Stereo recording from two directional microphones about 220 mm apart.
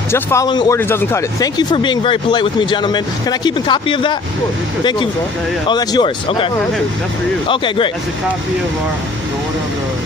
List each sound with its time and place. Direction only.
0.1 s speech: 15° left (ahead or behind)
5.7 s speech: 20° left (ahead or behind)